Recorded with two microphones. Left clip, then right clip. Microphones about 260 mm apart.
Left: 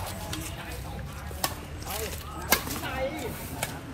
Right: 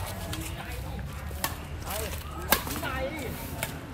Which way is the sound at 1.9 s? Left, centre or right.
Centre.